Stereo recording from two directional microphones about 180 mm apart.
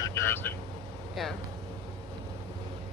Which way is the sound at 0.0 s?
15° left (ahead or behind).